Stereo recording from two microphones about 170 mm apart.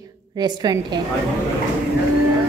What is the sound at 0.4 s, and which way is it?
Speech, 25° right (ahead or behind).